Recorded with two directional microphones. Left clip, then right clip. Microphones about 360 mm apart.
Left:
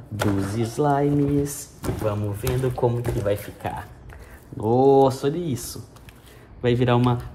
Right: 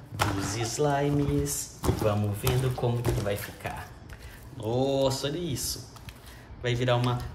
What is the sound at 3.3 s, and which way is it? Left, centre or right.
Speech, centre.